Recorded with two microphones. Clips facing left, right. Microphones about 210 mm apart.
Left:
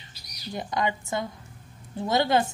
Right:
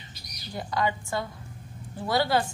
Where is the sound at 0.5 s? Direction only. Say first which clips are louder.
Even; 20° left (ahead or behind).